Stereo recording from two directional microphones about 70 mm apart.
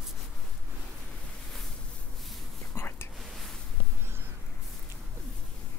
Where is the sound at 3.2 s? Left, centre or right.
Centre.